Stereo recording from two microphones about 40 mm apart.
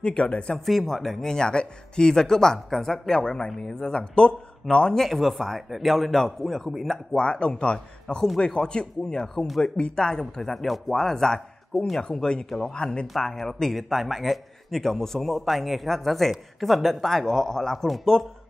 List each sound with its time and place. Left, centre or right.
0.0 s speech: left
0.7 s speech: centre; by 4.9 s left
4.9 s a man's voice: centre
7.1 s speech: left
9.1 s speech: centre
9.6 s speech: left
13.4 s a man's voice: centre
17.8 s a man's voice: centre